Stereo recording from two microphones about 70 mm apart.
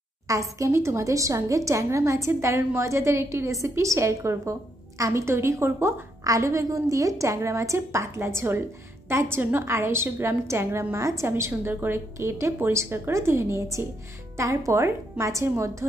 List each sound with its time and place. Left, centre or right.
0.3 s a woman's voice: right
6.2 s a woman's voice: right